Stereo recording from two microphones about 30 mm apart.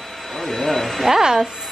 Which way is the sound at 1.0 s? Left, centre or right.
Centre.